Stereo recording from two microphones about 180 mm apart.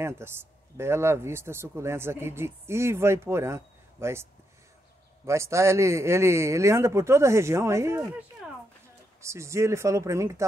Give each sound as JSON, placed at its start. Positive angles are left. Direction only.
{"t": 0.0, "sound": "speech", "side_deg": -15}
{"t": 9.2, "sound": "speech", "side_deg": -15}